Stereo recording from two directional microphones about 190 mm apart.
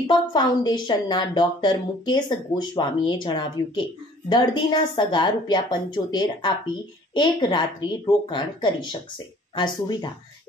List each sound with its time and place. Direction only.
0.0 s a woman's voice: 25° left (ahead or behind)